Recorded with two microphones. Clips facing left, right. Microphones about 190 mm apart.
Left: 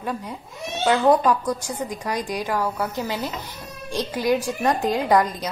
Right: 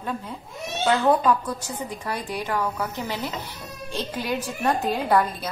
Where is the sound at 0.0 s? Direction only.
10° left (ahead or behind).